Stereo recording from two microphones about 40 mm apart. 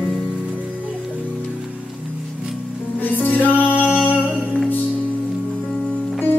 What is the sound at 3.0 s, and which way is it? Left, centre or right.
Music, left.